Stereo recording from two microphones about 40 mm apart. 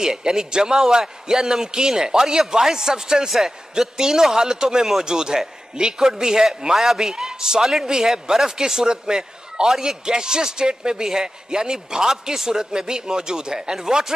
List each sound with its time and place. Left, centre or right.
0.0 s a man's voice: centre